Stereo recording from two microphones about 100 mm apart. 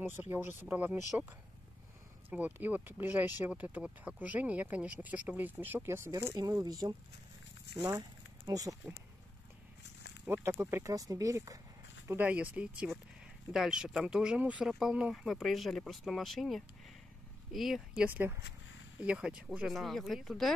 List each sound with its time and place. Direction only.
0.0 s speech: 20° right (ahead or behind)
2.2 s speech: 20° right (ahead or behind)
6.3 s speech: 40° right (ahead or behind)
8.5 s speech: 35° right (ahead or behind)
10.2 s speech: 20° right (ahead or behind)
10.8 s speech: 35° right (ahead or behind)
12.1 s speech: 20° right (ahead or behind); by 18.0 s centre (ahead or behind)
18.0 s speech: 20° right (ahead or behind); by 20.5 s centre (ahead or behind)